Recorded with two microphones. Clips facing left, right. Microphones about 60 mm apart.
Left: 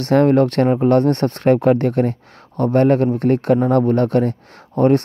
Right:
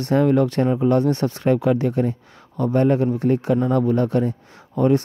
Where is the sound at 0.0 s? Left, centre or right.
Left.